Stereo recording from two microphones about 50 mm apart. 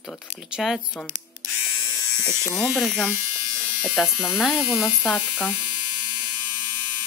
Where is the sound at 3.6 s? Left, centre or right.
Centre.